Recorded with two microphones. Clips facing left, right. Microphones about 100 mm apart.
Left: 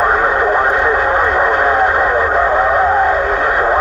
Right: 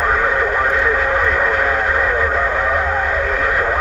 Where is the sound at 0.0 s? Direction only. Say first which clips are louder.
Left 4 dB; 35° left (ahead or behind).